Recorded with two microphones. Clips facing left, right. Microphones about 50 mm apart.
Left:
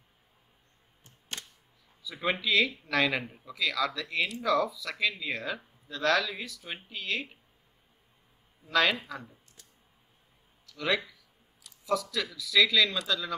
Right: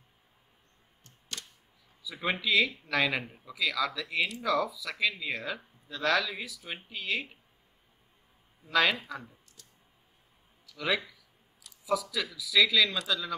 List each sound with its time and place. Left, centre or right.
1.3 s a sound: left
2.0 s speech: centre
8.6 s speech: centre
10.7 s speech: centre